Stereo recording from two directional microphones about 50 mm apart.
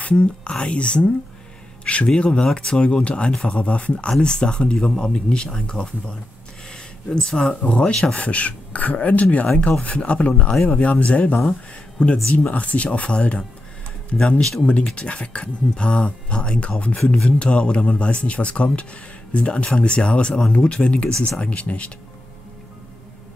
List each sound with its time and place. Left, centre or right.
0.0 s speech: left
14.4 s speech: centre
15.0 s speech: left